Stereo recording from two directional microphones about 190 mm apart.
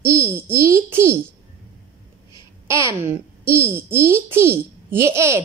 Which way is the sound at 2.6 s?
15° right (ahead or behind).